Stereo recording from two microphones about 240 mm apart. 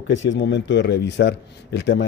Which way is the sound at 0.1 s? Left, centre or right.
Left.